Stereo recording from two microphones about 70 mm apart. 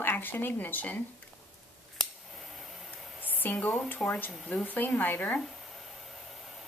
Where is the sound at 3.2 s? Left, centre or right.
Left.